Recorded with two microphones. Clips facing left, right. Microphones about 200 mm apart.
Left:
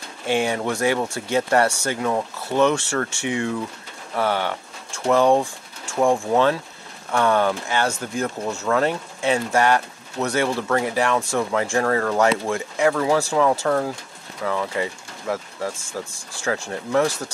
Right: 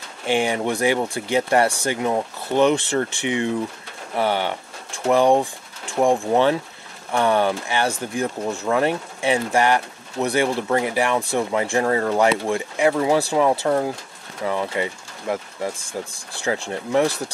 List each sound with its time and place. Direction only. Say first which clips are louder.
0.3 s speech: right 1 dB; 15° right (ahead or behind)